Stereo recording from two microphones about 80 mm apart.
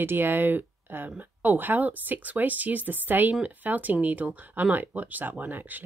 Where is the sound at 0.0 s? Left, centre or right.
Right.